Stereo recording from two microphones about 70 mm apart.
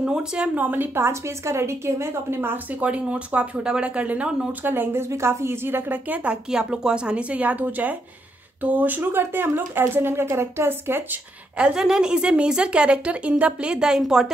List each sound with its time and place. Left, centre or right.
0.0 s speech: centre
0.7 s speech: right
2.8 s speech: centre
4.6 s speech: right
6.5 s speech: centre; by 11.1 s right
11.5 s a woman's voice: centre